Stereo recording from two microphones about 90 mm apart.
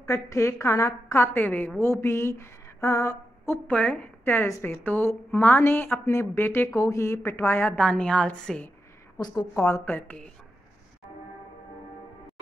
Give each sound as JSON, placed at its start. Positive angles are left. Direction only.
{"t": 0.0, "sound": "a woman's voice", "side_deg": 35}
{"t": 3.7, "sound": "a woman's voice", "side_deg": 15}
{"t": 4.2, "sound": "speech", "side_deg": 25}
{"t": 6.7, "sound": "speech", "side_deg": 35}
{"t": 7.8, "sound": "a woman's voice", "side_deg": 10}
{"t": 9.2, "sound": "a woman's voice", "side_deg": 50}
{"t": 9.5, "sound": "a woman's voice", "side_deg": 30}